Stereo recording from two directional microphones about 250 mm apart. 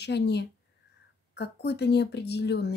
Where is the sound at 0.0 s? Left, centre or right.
Left.